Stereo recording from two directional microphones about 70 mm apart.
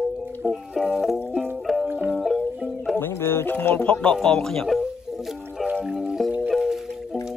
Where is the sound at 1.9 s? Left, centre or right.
Right.